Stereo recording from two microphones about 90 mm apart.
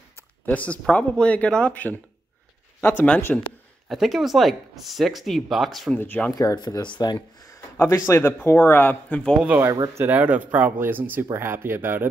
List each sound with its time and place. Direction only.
0.5 s speech: 15° left (ahead or behind)
3.9 s speech: 5° right (ahead or behind)
5.9 s speech: 20° left (ahead or behind)
6.3 s speech: 45° left (ahead or behind)
7.4 s a sound: 30° left (ahead or behind)
8.1 s speech: 25° left (ahead or behind)
9.9 s speech: 20° right (ahead or behind)